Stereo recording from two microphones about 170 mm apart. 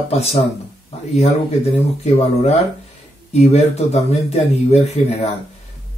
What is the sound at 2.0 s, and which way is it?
Speech, 40° left (ahead or behind).